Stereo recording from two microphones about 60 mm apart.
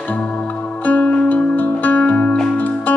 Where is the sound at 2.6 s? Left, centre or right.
Left.